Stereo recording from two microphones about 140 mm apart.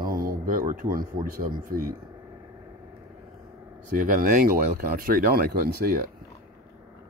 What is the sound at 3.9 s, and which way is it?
Speech, 80° right.